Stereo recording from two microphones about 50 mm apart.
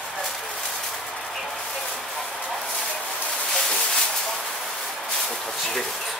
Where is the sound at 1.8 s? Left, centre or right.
Centre.